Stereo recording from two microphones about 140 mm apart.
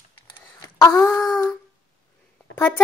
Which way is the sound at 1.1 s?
25° left (ahead or behind).